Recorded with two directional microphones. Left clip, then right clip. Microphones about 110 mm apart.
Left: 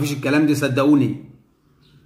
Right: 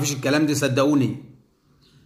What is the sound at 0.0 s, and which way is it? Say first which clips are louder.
A man's voice: left 2 dB; 15° right (ahead or behind).